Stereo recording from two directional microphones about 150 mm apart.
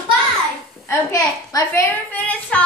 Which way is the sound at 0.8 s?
20° left (ahead or behind).